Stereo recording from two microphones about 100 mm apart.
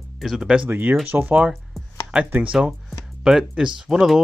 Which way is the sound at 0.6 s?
20° right (ahead or behind).